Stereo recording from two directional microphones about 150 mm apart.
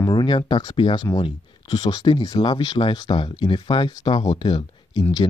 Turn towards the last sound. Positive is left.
turn(degrees=30)  # may be behind; listen again after turning